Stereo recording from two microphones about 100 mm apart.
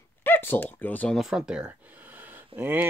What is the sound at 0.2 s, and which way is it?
Speech, 20° left (ahead or behind).